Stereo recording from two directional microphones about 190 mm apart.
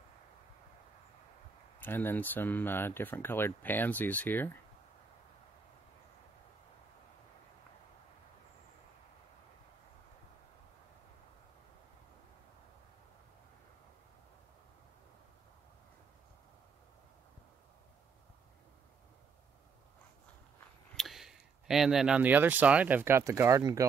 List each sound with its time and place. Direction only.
1.8 s speech: 10° left (ahead or behind)
20.9 s speech: centre (ahead or behind); by 23.9 s 15° right (ahead or behind)